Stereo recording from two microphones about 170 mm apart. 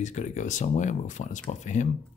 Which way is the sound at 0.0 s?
45° left (ahead or behind).